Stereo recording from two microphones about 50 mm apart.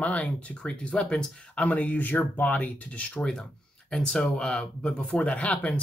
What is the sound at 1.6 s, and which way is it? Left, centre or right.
Speech, left.